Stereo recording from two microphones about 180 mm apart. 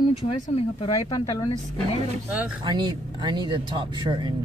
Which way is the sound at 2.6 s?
25° right (ahead or behind).